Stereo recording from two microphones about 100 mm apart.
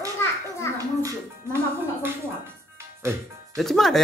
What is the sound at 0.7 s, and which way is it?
Music, 35° right (ahead or behind).